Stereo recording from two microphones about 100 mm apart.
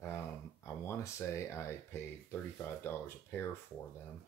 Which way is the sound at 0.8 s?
30° left (ahead or behind).